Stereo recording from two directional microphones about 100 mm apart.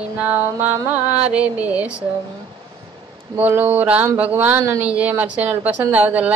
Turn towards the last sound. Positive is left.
turn(degrees=-15)  # may be behind; listen again after turning